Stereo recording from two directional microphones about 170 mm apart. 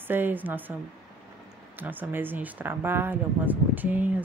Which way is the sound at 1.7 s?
10° right (ahead or behind).